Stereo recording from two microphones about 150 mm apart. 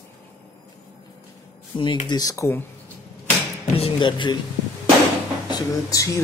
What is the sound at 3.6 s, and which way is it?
Music, 40° left (ahead or behind).